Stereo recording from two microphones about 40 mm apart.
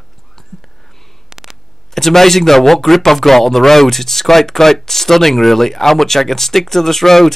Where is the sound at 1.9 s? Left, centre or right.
Centre.